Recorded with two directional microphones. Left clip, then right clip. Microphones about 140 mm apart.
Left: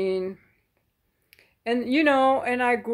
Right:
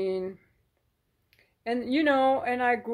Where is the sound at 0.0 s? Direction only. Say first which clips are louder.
Left 4 dB; 20° left (ahead or behind).